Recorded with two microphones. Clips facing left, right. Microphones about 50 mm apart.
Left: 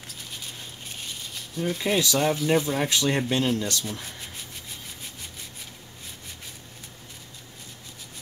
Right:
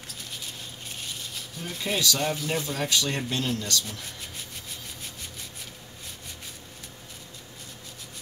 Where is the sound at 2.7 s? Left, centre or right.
Left.